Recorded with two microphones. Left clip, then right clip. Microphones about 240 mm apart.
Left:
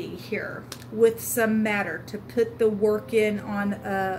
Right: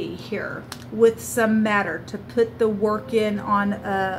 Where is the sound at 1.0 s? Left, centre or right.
Left.